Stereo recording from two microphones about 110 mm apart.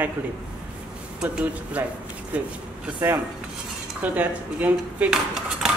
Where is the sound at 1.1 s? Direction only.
10° right (ahead or behind).